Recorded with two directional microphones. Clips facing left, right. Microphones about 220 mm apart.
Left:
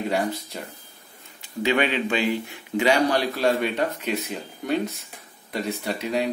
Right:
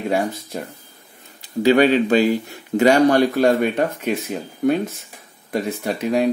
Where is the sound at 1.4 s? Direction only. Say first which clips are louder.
Right 8 dB; 35° right (ahead or behind).